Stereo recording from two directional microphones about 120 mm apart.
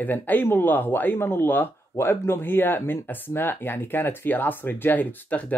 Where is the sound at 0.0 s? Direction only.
15° left (ahead or behind).